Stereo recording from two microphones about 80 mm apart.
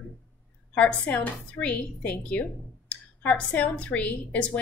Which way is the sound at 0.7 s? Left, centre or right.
Centre.